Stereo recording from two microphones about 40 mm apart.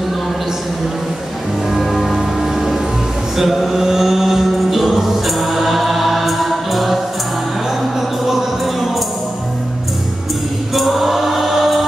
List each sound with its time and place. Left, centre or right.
1.7 s music: centre
8.3 s music: centre
10.7 s choir: centre